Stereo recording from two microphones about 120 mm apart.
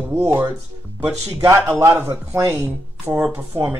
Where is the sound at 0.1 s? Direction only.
20° right (ahead or behind).